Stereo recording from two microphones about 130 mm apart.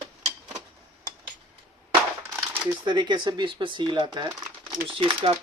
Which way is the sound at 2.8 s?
35° right (ahead or behind).